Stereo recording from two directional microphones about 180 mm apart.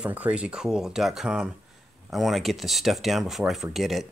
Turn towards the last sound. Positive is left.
turn(degrees=0)  # may be behind; listen again after turning